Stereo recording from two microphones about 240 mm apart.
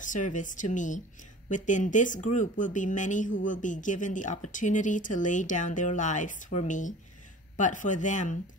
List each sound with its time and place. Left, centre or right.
0.0 s speech: left